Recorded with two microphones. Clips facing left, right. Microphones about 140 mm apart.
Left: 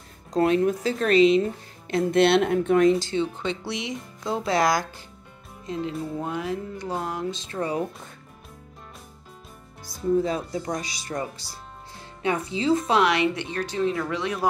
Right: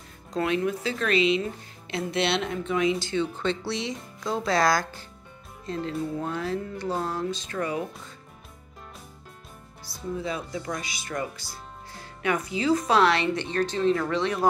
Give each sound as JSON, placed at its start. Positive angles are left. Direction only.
{"t": 0.3, "sound": "speech", "side_deg": 40}
{"t": 3.0, "sound": "speech", "side_deg": 30}
{"t": 3.3, "sound": "speech", "side_deg": 15}
{"t": 10.1, "sound": "speech", "side_deg": 40}